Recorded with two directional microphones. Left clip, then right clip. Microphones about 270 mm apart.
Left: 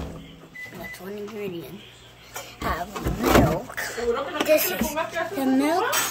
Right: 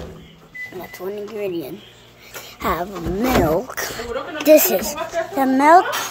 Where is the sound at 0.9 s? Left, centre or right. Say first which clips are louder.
Right 9 dB; right.